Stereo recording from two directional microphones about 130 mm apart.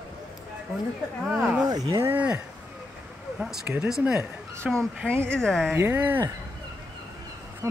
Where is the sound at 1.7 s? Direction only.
30° right (ahead or behind).